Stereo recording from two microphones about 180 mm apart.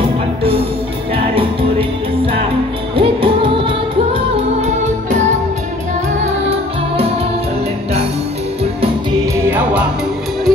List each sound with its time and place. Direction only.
0.4 s music: 30° right (ahead or behind)
3.0 s music: 30° right (ahead or behind)
6.2 s music: 30° right (ahead or behind)
9.5 s music: 10° right (ahead or behind)